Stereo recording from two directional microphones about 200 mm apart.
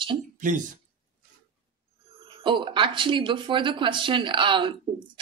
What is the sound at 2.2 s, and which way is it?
Speech, 25° right (ahead or behind).